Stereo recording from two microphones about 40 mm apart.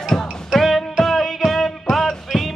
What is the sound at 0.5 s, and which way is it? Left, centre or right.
Music, centre.